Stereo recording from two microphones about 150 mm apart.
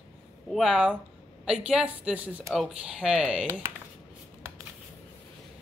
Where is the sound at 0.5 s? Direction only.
Centre (ahead or behind).